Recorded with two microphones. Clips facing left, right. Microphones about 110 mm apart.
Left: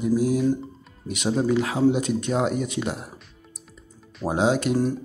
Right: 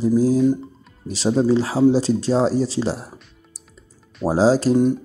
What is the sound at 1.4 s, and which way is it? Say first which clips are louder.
Speech: right 4 dB; 30° right (ahead or behind).